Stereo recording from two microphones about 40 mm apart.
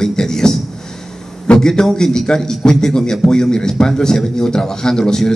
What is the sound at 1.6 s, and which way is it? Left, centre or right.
A man's voice, centre.